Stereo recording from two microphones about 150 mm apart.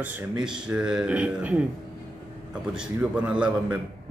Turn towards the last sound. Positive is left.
turn(degrees=-5)  # may be behind; listen again after turning